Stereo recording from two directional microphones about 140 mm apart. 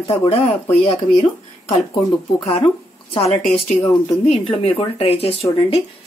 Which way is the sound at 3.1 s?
40° left (ahead or behind).